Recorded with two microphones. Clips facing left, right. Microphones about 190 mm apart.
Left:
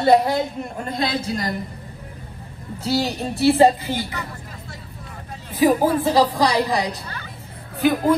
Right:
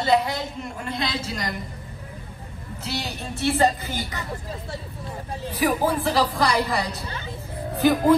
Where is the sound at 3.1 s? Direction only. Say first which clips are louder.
Left 5 dB; 35° left (ahead or behind).